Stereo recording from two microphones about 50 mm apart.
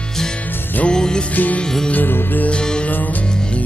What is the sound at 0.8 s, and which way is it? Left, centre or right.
Music, centre.